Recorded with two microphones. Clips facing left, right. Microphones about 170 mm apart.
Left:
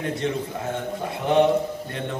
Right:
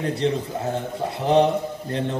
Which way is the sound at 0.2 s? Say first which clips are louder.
Right 3 dB; 30° right (ahead or behind).